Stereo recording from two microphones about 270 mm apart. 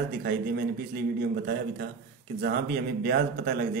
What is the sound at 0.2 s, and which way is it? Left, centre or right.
A man's voice, right.